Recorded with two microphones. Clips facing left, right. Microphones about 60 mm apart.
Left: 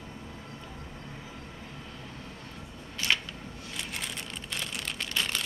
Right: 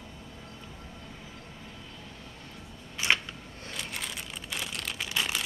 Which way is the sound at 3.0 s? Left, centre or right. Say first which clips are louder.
Right 2 dB; centre.